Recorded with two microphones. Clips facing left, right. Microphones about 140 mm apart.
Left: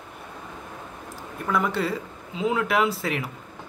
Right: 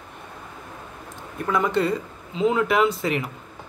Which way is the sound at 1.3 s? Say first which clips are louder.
Right 3 dB; centre (ahead or behind).